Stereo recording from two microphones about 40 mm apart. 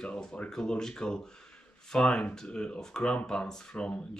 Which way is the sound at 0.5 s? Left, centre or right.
Centre.